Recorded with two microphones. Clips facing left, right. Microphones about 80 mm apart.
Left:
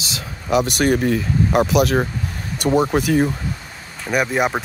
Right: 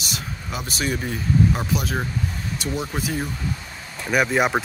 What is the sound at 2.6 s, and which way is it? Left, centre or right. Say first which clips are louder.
Speech: left 12 dB; left.